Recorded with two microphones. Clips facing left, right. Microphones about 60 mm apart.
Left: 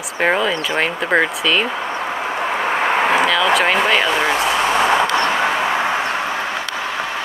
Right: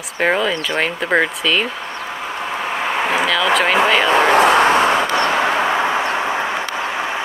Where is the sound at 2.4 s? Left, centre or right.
Left.